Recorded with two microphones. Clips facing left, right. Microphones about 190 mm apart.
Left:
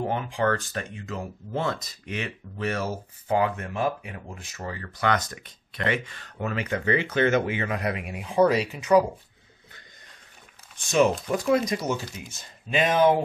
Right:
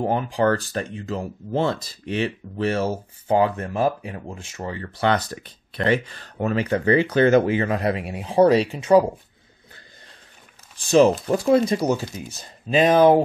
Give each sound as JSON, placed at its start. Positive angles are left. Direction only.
{"t": 0.1, "sound": "speech", "side_deg": -35}
{"t": 10.8, "sound": "speech", "side_deg": -35}